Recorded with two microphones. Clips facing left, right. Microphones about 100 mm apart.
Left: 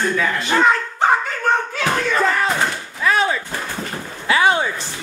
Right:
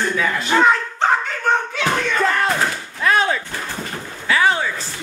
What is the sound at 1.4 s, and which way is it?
Slam, centre (ahead or behind).